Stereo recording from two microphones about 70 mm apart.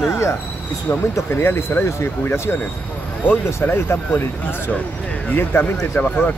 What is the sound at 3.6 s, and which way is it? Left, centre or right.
Speech, left.